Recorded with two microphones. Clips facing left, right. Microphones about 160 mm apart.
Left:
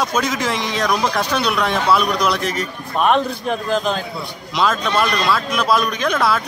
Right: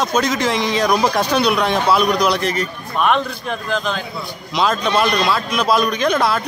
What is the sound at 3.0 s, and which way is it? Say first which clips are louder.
Speech: left 2 dB; 40° left (ahead or behind).